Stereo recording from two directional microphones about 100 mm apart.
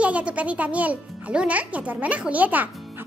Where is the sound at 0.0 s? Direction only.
10° right (ahead or behind).